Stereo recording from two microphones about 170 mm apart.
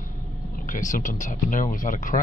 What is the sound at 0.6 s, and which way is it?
Speech, 50° left (ahead or behind).